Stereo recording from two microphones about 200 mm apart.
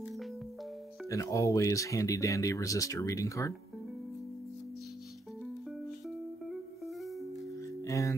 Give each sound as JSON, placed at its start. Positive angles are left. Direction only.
{"t": 0.0, "sound": "music", "side_deg": 0}
{"t": 1.0, "sound": "speech", "side_deg": 15}
{"t": 5.4, "sound": "music", "side_deg": 0}
{"t": 7.8, "sound": "music", "side_deg": 15}